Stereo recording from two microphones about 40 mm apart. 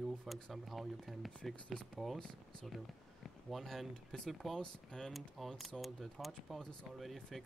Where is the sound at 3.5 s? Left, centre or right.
Centre.